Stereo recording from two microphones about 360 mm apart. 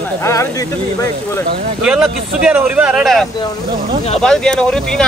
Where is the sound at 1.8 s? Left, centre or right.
Centre.